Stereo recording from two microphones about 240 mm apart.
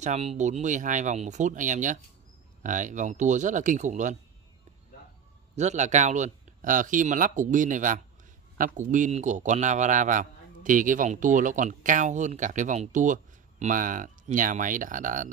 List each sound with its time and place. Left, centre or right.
0.0 s a man's voice: right
5.6 s a man's voice: right